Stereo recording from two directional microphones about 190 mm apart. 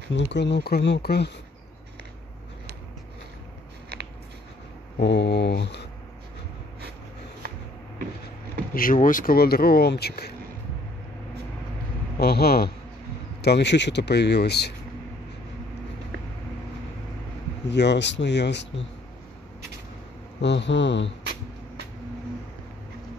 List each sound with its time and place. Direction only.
0.1 s speech: 65° left (ahead or behind)
4.9 s speech: 65° left (ahead or behind)
7.4 s a sound: 55° right (ahead or behind)
8.7 s speech: 45° left (ahead or behind)
12.2 s speech: 55° left (ahead or behind)
17.6 s speech: 65° left (ahead or behind)
20.3 s a man's voice: 65° left (ahead or behind)